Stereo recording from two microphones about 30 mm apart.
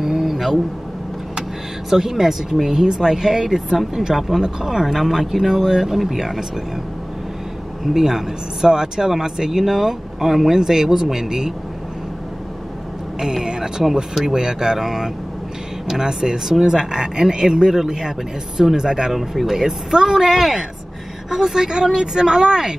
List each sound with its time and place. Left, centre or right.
0.0 s a sound: centre
1.9 s speech: centre
2.7 s speech: right
4.1 s speech: centre
7.9 s speech: centre
10.5 s speech: centre
13.2 s speech: centre
14.8 s speech: centre
16.0 s speech: right
19.1 s a woman's voice: centre
21.6 s speech: right